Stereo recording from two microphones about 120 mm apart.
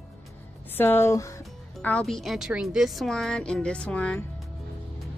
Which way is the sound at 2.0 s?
Centre (ahead or behind).